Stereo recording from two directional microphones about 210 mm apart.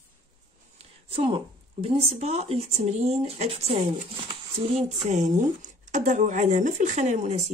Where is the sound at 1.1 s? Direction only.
25° right (ahead or behind).